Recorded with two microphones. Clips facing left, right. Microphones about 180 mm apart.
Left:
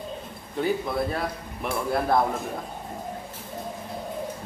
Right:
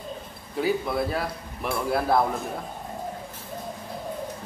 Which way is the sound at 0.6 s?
5° right (ahead or behind).